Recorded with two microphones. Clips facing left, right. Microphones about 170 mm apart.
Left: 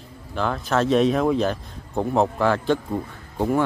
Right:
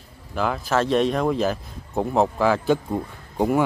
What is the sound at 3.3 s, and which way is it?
Speech, 15° right (ahead or behind).